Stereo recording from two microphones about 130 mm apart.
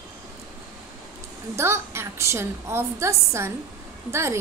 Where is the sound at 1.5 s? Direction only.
20° right (ahead or behind).